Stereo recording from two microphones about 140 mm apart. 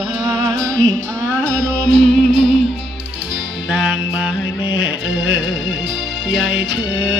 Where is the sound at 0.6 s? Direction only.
10° left (ahead or behind).